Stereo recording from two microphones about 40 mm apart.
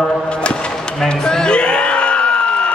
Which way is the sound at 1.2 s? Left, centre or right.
Centre.